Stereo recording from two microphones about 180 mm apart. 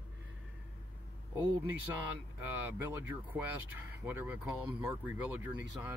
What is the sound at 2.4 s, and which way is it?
Speech, 10° right (ahead or behind).